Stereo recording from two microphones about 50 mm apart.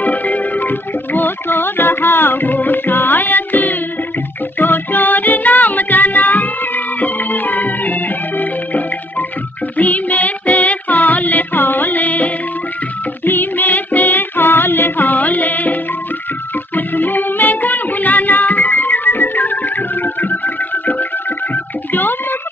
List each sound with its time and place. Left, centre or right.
0.0 s music: left